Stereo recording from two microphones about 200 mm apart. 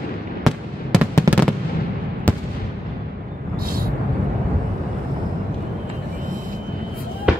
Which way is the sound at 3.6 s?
45° right (ahead or behind).